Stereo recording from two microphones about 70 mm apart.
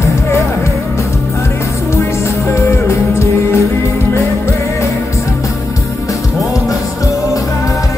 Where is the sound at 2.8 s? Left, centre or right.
Left.